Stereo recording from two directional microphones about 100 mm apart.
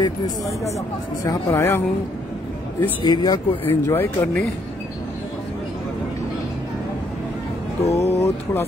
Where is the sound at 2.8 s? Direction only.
50° left (ahead or behind).